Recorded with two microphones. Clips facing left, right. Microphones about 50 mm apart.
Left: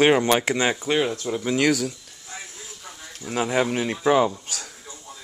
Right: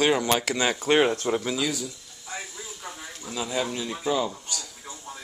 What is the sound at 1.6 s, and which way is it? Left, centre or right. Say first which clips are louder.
Speech: left 8 dB; left.